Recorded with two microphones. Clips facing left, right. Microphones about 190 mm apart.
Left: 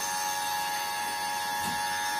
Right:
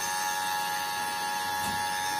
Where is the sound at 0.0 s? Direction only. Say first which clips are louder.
Even; centre (ahead or behind).